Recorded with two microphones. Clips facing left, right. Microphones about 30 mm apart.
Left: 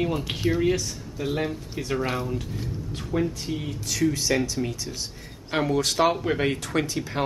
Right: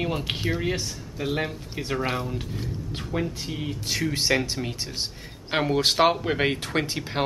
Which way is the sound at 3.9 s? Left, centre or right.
Right.